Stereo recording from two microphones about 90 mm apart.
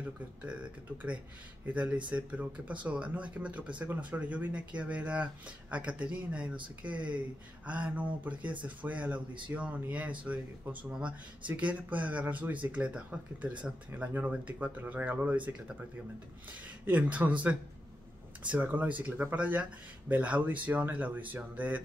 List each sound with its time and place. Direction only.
1.7 s speech: 15° right (ahead or behind)
16.8 s speech: 15° right (ahead or behind)